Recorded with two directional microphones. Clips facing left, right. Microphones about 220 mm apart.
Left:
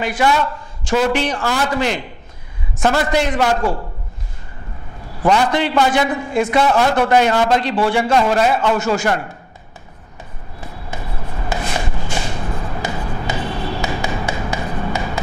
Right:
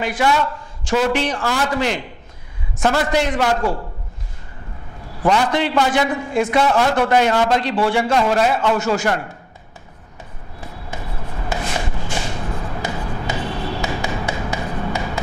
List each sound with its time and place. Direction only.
0.0 s a man's voice: 15° left (ahead or behind)
3.1 s a man's voice: 10° left (ahead or behind)
5.2 s a man's voice: 15° left (ahead or behind)
9.0 s speech: 20° left (ahead or behind)
10.6 s a sound: 15° left (ahead or behind)
12.4 s a sound: 20° left (ahead or behind)